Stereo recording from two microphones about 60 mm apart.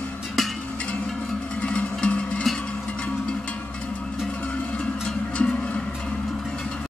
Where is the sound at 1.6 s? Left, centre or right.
Centre.